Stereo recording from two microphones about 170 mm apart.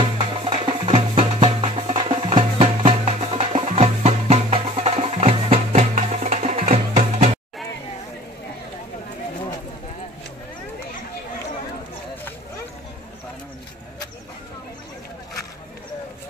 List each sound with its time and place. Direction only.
0.2 s music: 35° right (ahead or behind)